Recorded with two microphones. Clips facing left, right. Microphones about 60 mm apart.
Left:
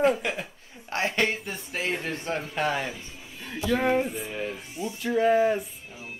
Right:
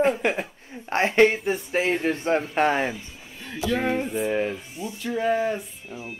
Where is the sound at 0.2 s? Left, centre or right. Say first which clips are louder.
Right 6 dB; right.